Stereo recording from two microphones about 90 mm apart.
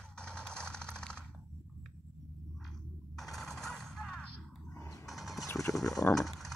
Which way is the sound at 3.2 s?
5° left (ahead or behind).